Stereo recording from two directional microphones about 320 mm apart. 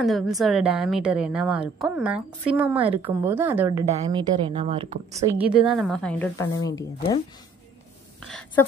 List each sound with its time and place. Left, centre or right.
0.0 s a woman's voice: centre; by 5.3 s right
5.6 s a woman's voice: centre
8.3 s a woman's voice: centre